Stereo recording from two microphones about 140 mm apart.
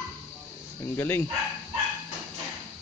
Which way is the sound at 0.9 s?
15° left (ahead or behind).